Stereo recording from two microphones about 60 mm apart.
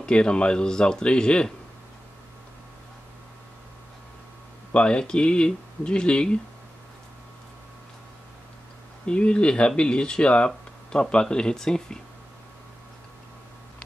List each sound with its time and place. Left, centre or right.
0.0 s speech: centre
4.7 s speech: centre
9.0 s speech: centre